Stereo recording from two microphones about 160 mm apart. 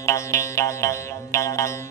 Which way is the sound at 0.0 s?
20° left (ahead or behind).